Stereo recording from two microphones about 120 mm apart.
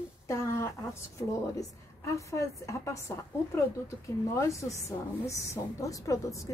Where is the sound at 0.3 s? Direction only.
20° left (ahead or behind).